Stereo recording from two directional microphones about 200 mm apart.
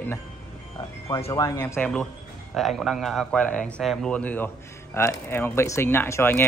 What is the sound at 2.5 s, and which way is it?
A man's voice, centre (ahead or behind).